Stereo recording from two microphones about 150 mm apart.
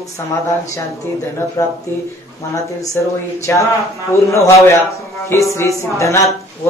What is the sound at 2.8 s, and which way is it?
Speech, 20° left (ahead or behind).